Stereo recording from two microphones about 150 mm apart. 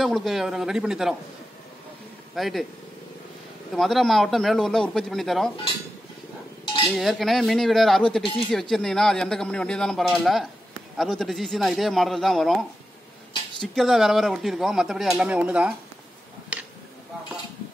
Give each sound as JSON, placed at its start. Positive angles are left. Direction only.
{"t": 0.0, "sound": "speech", "side_deg": 0}
{"t": 2.3, "sound": "speech", "side_deg": 0}
{"t": 3.7, "sound": "speech", "side_deg": 0}
{"t": 6.6, "sound": "cutlery", "side_deg": 35}
{"t": 6.9, "sound": "speech", "side_deg": 0}